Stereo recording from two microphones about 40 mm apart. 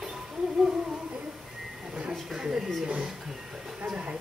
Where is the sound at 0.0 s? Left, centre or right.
Centre.